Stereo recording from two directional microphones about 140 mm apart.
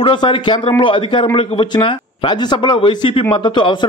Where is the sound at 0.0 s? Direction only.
35° left (ahead or behind).